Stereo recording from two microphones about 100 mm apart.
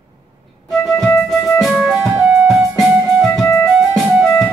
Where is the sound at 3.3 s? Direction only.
25° left (ahead or behind).